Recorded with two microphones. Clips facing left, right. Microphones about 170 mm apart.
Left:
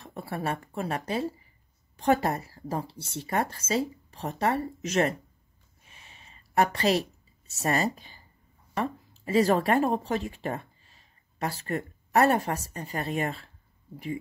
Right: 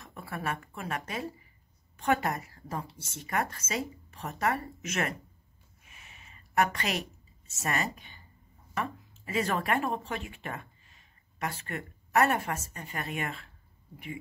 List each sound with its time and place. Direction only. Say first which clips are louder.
0.0 s speech: left 4 dB; 30° left (ahead or behind)
5.9 s a sound: left 1 dB; 30° left (ahead or behind)
8.7 s speech: left 4 dB; 30° left (ahead or behind)